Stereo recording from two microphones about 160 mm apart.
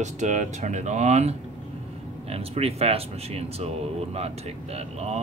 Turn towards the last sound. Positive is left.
turn(degrees=-40)  # may be behind; listen again after turning